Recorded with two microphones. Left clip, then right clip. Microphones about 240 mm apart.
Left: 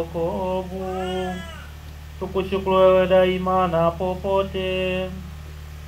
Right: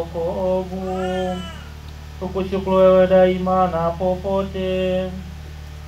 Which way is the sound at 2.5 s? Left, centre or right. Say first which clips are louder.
Right 2 dB; left.